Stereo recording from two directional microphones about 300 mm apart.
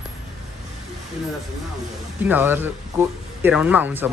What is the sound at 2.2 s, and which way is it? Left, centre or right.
Speech, centre.